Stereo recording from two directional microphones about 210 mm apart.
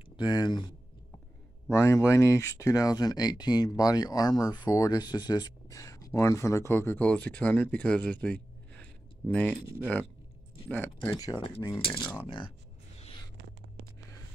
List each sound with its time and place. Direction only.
0.2 s speech: 20° left (ahead or behind)
1.7 s speech: 15° left (ahead or behind)
11.0 s speech: 15° left (ahead or behind)
13.0 s a sound: 25° left (ahead or behind)